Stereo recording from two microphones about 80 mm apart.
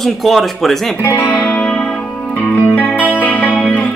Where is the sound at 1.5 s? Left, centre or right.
Centre.